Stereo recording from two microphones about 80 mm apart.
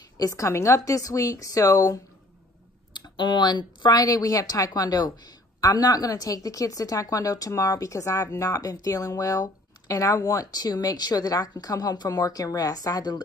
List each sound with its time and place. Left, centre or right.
0.2 s a woman's voice: left
3.2 s a woman's voice: left